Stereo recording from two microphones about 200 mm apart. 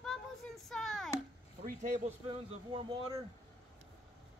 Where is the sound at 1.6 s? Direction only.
40° right (ahead or behind); by 3.2 s 20° right (ahead or behind).